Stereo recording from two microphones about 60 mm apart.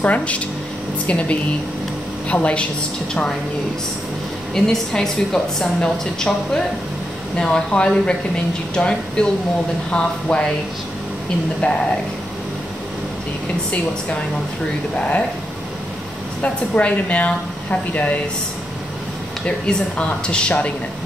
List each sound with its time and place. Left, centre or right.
0.0 s a woman's voice: left
4.6 s a woman's voice: centre
11.6 s a woman's voice: left
16.4 s a woman's voice: left
19.4 s a woman's voice: centre